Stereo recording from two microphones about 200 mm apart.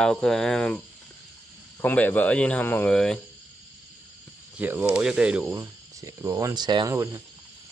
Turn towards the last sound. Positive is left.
turn(degrees=-15)  # may be behind; listen again after turning